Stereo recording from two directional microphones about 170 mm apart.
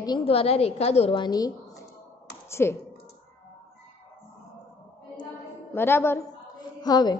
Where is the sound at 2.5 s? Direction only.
15° left (ahead or behind).